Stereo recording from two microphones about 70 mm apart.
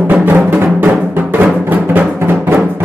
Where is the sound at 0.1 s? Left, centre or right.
Right.